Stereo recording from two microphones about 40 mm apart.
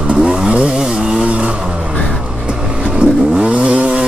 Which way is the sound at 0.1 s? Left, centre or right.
Right.